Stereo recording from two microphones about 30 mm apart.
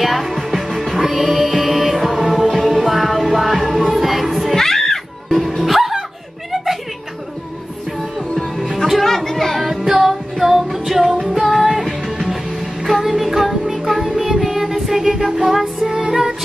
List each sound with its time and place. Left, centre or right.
0.0 s music: centre
4.6 s music: centre
5.6 s music: centre
8.9 s music: centre
9.6 s music: centre